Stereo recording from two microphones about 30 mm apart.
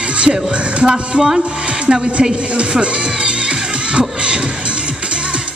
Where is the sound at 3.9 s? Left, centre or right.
Right.